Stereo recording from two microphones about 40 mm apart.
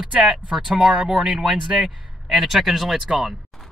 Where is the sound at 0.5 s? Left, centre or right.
Centre.